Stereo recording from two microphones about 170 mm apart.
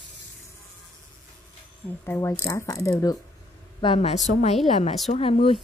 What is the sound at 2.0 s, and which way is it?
Speech, 15° left (ahead or behind).